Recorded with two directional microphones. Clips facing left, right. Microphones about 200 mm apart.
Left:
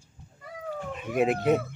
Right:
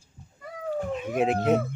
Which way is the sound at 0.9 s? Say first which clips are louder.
Left 1 dB; centre (ahead or behind).